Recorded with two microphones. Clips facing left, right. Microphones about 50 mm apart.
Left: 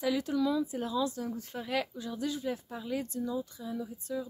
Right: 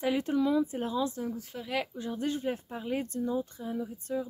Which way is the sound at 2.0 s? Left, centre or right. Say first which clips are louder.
Right 3 dB; right.